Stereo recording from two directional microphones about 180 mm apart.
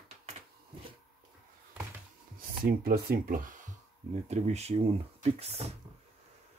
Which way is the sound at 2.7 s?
55° right (ahead or behind).